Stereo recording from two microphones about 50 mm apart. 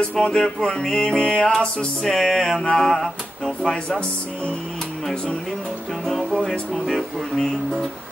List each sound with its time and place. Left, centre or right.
0.2 s music: centre
6.4 s music: centre